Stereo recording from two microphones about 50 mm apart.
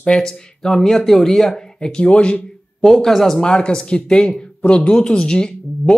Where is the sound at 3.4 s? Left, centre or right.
Centre.